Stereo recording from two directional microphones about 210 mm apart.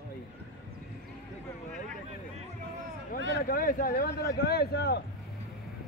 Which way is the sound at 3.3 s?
45° left (ahead or behind).